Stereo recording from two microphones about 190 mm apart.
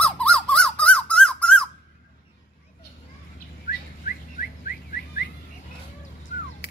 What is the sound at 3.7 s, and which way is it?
Bird, 50° left (ahead or behind).